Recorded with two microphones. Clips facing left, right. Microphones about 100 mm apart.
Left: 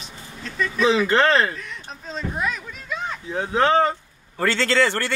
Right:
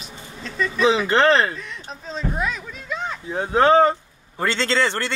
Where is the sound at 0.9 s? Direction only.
20° right (ahead or behind).